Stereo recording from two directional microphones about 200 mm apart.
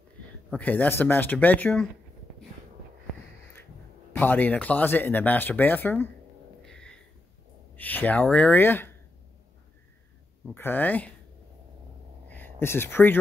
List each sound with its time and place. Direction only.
0.5 s speech: 10° left (ahead or behind)
4.1 s speech: 10° left (ahead or behind)
6.6 s a sound: 5° left (ahead or behind)
7.7 s speech: 10° left (ahead or behind)
10.5 s speech: 10° left (ahead or behind)
12.3 s speech: 10° left (ahead or behind)